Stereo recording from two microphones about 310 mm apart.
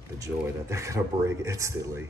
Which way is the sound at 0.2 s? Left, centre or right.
Centre.